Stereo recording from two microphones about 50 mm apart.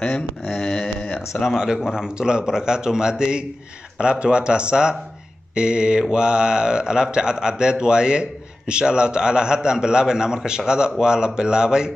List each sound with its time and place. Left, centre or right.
0.1 s a sound: centre
1.3 s speech: left
1.9 s speech: centre